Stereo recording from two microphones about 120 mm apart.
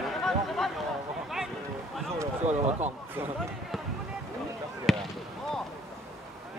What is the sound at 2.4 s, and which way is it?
Speech, 70° right (ahead or behind).